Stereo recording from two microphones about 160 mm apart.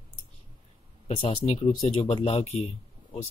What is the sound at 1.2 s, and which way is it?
Speech, 40° left (ahead or behind).